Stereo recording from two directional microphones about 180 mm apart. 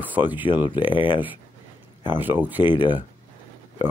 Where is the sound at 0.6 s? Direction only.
25° left (ahead or behind).